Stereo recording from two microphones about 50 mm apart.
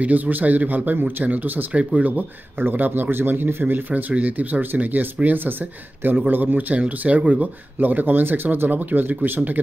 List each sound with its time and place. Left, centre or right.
0.0 s speech: right
2.6 s speech: right
3.7 s speech: right
6.8 s speech: right
7.8 s speech: right